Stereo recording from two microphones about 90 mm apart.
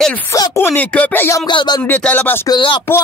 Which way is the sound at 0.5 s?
25° left (ahead or behind).